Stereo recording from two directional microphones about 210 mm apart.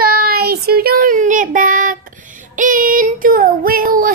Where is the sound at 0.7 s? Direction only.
45° right (ahead or behind).